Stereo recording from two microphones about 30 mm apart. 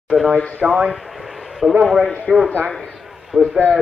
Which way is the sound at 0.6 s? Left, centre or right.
Centre.